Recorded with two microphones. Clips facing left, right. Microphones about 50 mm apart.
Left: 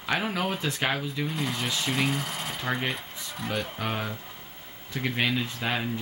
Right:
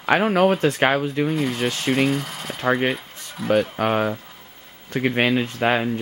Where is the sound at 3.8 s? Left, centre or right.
Right.